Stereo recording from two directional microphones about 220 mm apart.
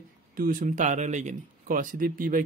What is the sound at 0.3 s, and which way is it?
Speech, 40° right (ahead or behind).